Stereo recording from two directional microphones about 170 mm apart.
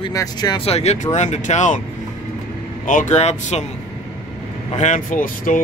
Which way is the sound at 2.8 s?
45° left (ahead or behind).